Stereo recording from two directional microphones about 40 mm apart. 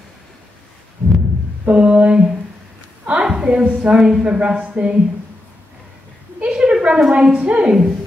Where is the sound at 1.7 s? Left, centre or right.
Right.